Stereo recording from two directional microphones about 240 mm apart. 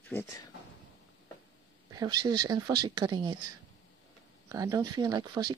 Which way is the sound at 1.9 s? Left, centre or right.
Centre.